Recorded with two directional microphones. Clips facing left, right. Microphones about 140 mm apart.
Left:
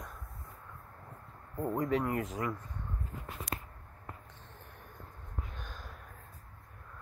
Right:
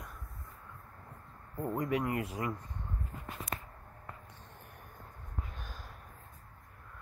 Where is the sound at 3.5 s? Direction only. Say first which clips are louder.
Even; 85° left.